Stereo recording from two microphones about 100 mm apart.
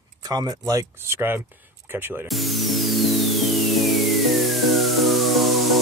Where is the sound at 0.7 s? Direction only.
30° right (ahead or behind).